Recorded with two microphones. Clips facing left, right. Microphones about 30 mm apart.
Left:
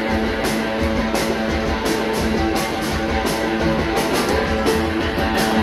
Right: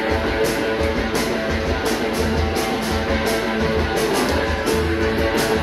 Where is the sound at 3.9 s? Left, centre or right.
Left.